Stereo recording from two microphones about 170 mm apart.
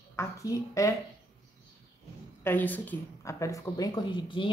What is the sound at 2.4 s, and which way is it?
Speech, 10° left (ahead or behind).